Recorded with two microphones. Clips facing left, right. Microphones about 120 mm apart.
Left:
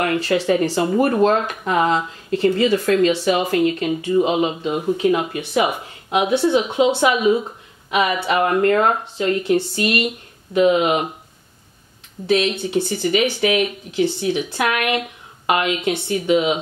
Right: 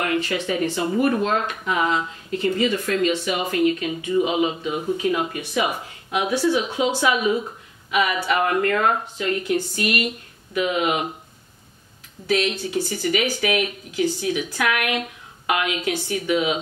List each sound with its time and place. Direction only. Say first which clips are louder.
0.4 s speech: left 5 dB; 35° left (ahead or behind)
12.3 s speech: left 4 dB; 25° left (ahead or behind)